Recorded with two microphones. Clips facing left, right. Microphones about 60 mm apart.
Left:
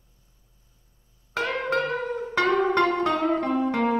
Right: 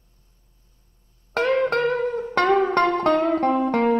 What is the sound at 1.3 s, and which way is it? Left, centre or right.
Music, right.